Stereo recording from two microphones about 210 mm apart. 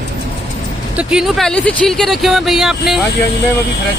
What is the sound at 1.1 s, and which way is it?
Speech, centre (ahead or behind).